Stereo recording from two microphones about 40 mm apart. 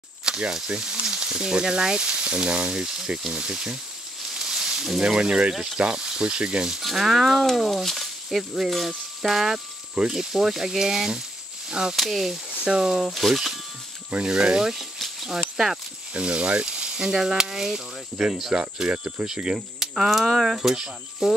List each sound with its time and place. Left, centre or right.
0.2 s speech: centre
2.8 s speech: centre
4.3 s frying: centre
5.1 s speech: centre
6.8 s speech: centre
11.9 s speech: centre
12.4 s speech: right; by 13.6 s centre
14.2 s speech: right
16.1 s speech: right; by 18.5 s centre
18.5 s speech: right
19.9 s speech: centre